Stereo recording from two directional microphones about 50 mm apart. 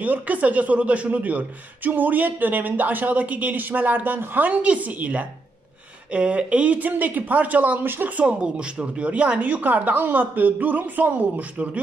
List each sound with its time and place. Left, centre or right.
0.0 s a woman's voice: right